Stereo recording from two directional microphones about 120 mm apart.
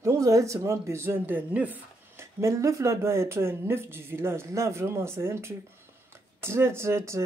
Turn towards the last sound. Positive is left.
turn(degrees=-20)  # may be behind; listen again after turning